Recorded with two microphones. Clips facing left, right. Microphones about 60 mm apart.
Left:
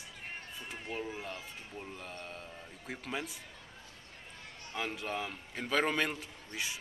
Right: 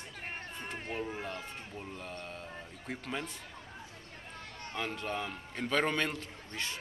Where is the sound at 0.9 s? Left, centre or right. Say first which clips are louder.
Right 1 dB; centre.